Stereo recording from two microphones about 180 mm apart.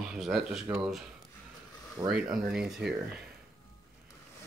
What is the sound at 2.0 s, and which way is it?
Speech, 5° right (ahead or behind).